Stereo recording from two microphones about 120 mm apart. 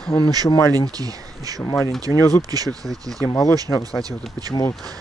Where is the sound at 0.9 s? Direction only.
30° right (ahead or behind).